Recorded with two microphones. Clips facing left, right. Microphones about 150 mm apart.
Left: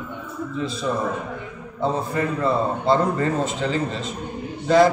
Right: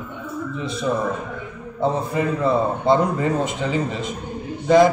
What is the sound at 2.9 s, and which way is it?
A man's voice, 15° right (ahead or behind).